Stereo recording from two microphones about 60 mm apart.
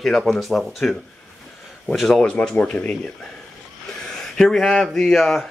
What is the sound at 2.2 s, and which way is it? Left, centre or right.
Speech, centre.